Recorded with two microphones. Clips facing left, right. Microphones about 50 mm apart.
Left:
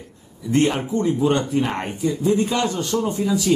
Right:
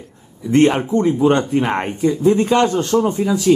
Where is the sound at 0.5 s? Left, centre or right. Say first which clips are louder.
Right 6 dB; right.